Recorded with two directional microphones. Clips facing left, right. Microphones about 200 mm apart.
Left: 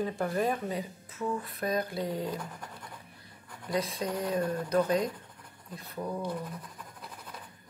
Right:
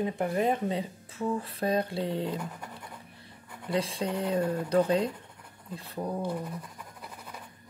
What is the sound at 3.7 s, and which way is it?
Speech, 30° right (ahead or behind).